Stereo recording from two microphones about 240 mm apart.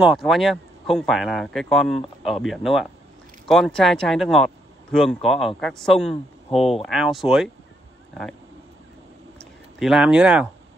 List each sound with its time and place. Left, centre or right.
0.0 s speech: centre
6.5 s speech: left
6.9 s speech: centre
9.4 s speech: centre